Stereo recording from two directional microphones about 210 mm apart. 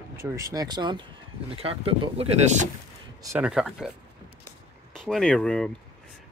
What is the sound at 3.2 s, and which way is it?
Speech, 15° right (ahead or behind).